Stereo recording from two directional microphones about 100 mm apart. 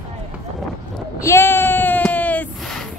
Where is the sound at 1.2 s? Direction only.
25° left (ahead or behind).